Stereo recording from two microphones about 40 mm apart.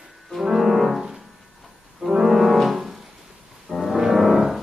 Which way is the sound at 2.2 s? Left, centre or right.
Centre.